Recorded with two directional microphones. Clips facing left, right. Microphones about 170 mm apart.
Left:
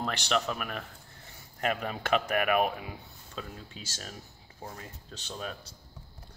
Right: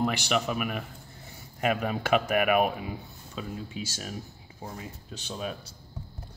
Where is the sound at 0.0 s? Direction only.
10° right (ahead or behind).